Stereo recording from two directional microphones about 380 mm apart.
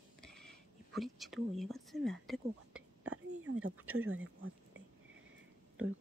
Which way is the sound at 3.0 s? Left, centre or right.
Right.